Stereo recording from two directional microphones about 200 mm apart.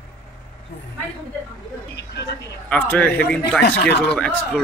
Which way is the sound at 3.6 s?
55° left (ahead or behind).